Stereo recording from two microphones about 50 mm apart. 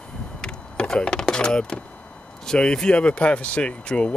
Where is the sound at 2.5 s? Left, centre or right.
Centre.